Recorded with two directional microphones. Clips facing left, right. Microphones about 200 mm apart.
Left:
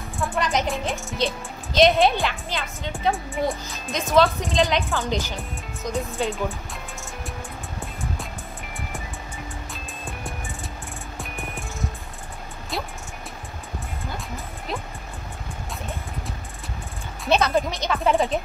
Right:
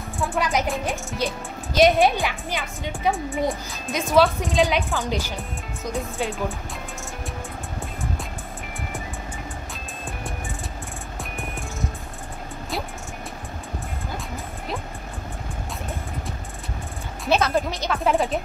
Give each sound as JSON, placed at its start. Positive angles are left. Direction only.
{"t": 0.2, "sound": "speech", "side_deg": -5}
{"t": 5.9, "sound": "speech", "side_deg": 0}
{"t": 11.1, "sound": "music", "side_deg": 0}
{"t": 17.2, "sound": "speech", "side_deg": 0}